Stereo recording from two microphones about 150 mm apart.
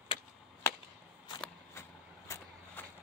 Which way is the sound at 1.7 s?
15° left (ahead or behind).